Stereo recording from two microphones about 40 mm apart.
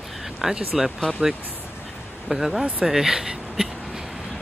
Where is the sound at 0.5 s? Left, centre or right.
Centre.